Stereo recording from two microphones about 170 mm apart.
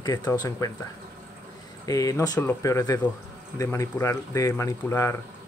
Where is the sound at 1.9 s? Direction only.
20° left (ahead or behind).